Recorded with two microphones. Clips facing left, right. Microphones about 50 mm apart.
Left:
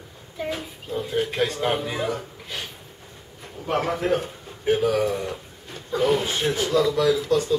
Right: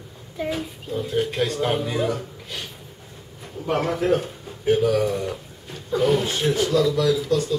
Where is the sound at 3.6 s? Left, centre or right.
Centre.